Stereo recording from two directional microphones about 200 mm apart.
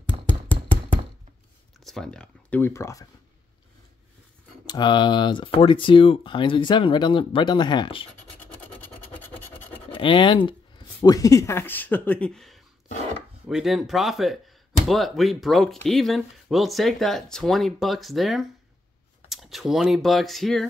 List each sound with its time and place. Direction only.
0.3 s a sound: 5° left (ahead or behind)
1.9 s speech: 5° left (ahead or behind)
4.6 s speech: 20° left (ahead or behind)
8.4 s scratch: 10° left (ahead or behind)
9.9 s speech: 25° left (ahead or behind); by 20.6 s centre (ahead or behind)